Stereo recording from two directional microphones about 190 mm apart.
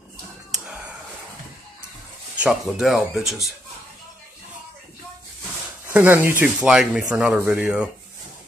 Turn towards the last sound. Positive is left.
turn(degrees=-5)  # may be behind; listen again after turning